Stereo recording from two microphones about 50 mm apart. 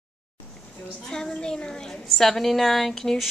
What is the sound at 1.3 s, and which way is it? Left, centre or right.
A woman's voice, centre.